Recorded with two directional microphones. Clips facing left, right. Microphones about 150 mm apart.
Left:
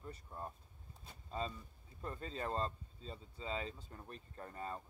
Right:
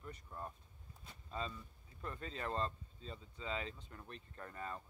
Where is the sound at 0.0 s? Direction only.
25° left (ahead or behind).